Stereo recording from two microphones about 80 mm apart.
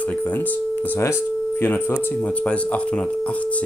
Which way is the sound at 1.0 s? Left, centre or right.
Left.